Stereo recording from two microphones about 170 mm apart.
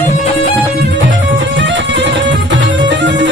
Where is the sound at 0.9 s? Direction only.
90° right.